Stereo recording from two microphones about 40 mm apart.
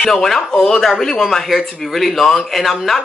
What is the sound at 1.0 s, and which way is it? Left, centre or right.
Speech, centre.